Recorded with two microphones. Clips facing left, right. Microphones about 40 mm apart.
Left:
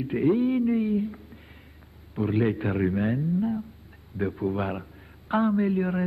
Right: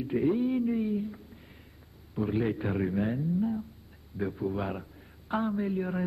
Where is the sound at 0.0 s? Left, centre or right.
Left.